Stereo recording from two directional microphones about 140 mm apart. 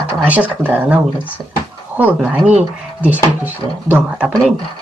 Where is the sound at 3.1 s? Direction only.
15° right (ahead or behind).